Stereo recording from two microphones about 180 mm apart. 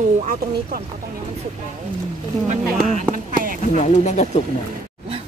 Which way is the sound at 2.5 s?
40° right (ahead or behind).